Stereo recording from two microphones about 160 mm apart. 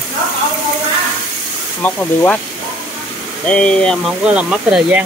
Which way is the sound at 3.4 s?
5° left (ahead or behind).